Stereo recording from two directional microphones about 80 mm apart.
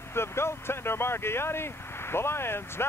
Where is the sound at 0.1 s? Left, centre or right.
Left.